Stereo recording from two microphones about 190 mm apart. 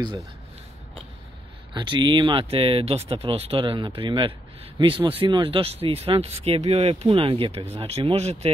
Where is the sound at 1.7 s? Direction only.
25° right (ahead or behind).